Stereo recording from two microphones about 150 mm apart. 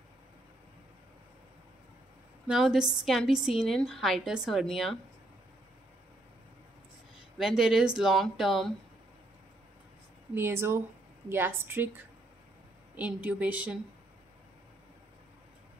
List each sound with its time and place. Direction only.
2.4 s a woman's voice: 5° right (ahead or behind)
7.3 s a woman's voice: 5° right (ahead or behind)
10.3 s speech: 15° right (ahead or behind)
12.9 s speech: 10° right (ahead or behind)